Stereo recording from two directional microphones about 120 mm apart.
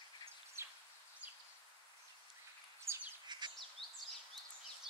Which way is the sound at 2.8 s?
20° right (ahead or behind).